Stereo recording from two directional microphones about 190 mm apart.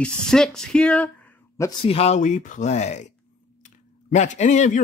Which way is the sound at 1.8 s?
30° left (ahead or behind).